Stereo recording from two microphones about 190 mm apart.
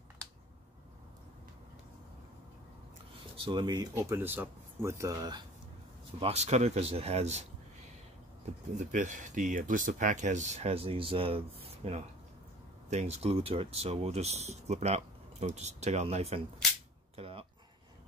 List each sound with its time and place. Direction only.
3.3 s speech: 25° right (ahead or behind)
6.1 s speech: 35° right (ahead or behind)
8.7 s speech: 40° right (ahead or behind)
17.1 s music: 30° right (ahead or behind)